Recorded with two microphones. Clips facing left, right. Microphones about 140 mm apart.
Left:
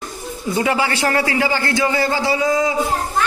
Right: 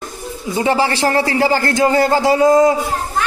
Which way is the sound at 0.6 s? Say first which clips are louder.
Right 3 dB; 30° right (ahead or behind).